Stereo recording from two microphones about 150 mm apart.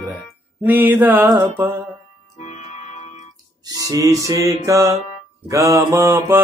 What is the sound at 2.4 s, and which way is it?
Music, 50° left (ahead or behind).